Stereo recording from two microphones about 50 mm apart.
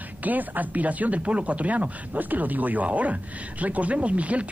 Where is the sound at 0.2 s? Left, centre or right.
Right.